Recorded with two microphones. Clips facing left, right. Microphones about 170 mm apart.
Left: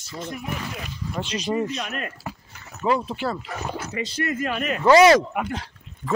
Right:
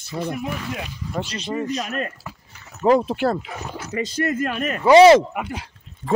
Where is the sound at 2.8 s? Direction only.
45° right (ahead or behind).